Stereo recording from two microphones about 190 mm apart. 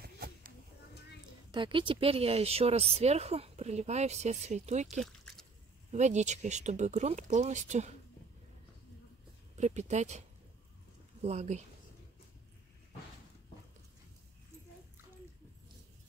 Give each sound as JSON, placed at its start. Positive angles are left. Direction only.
{"t": 0.0, "sound": "a sound", "side_deg": -55}
{"t": 1.5, "sound": "speech", "side_deg": -25}
{"t": 5.0, "sound": "a sound", "side_deg": 5}
{"t": 5.9, "sound": "speech", "side_deg": -40}
{"t": 9.6, "sound": "speech", "side_deg": -35}
{"t": 11.2, "sound": "speech", "side_deg": -35}